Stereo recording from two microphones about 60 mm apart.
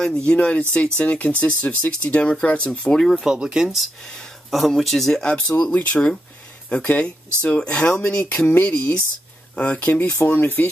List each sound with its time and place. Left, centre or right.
0.3 s speech: left
3.0 s speech: centre
3.3 s speech: centre
5.2 s speech: centre